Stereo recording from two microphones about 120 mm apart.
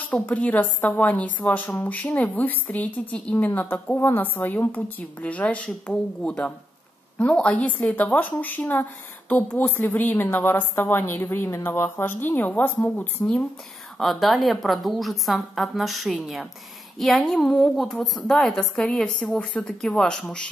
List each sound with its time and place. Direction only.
0.0 s a woman's voice: 10° left (ahead or behind)
13.9 s a woman's voice: centre (ahead or behind)